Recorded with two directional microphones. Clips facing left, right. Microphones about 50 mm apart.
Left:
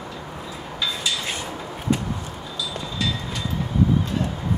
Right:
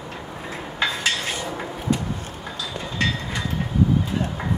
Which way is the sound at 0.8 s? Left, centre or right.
Right.